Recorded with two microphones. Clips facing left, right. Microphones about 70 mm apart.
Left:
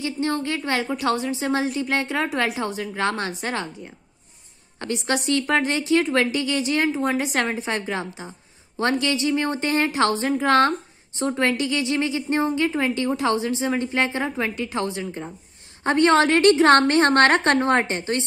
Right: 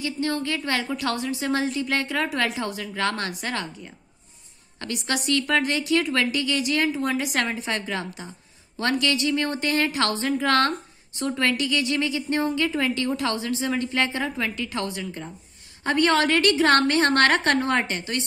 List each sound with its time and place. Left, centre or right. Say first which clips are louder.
0.0 s a woman's voice: left 2 dB; left